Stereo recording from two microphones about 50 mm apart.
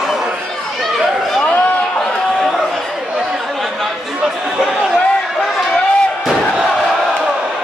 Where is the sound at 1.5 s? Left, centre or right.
Left.